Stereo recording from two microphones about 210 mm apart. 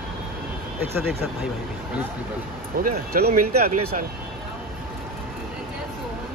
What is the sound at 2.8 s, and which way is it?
Speech, 45° right (ahead or behind).